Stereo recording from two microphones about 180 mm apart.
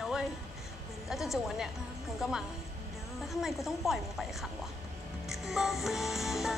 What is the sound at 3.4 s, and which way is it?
Speech, centre (ahead or behind).